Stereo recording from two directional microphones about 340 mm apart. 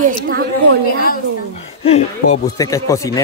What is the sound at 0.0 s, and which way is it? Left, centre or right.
Speech, right.